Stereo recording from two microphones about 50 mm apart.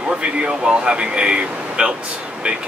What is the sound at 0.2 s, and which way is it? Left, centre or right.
Speech, centre.